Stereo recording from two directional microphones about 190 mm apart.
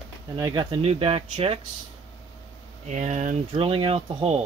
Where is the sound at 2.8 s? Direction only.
40° right (ahead or behind).